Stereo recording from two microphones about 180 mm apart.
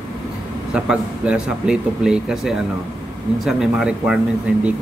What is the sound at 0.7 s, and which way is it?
A man's voice, 5° right (ahead or behind).